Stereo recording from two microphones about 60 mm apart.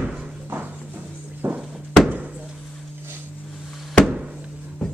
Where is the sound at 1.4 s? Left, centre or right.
Right.